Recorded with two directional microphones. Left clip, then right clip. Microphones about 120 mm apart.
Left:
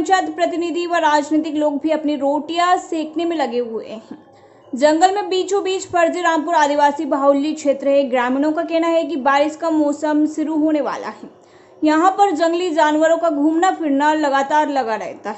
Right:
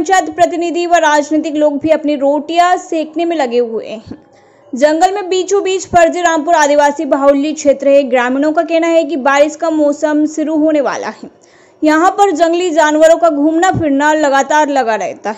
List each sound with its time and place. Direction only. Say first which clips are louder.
0.0 s a woman's voice: right 6 dB; 25° right (ahead or behind)